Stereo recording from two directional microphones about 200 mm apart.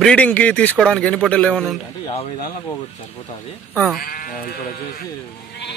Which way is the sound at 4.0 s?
45° left (ahead or behind).